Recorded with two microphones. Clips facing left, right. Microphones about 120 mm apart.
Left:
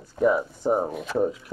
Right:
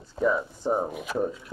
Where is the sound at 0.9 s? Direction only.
5° right (ahead or behind).